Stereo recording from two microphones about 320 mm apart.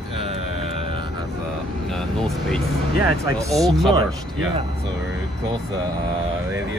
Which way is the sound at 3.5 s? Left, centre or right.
Centre.